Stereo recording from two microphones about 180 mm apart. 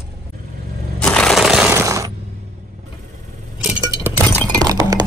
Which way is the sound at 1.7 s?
15° right (ahead or behind).